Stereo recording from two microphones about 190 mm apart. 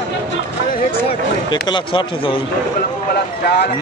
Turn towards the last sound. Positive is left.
turn(degrees=60)  # may be behind; listen again after turning